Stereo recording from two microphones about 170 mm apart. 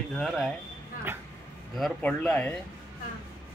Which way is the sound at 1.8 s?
5° left (ahead or behind).